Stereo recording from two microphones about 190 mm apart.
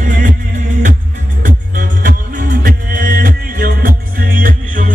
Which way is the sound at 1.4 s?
45° right (ahead or behind).